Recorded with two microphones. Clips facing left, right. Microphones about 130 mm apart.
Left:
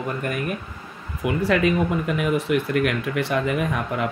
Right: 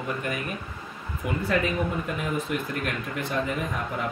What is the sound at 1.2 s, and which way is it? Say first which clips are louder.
Speech: left 6 dB; 90° left.